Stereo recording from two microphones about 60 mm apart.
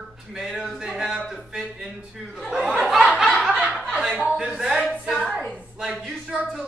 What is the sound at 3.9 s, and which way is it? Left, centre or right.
Chuckle, centre.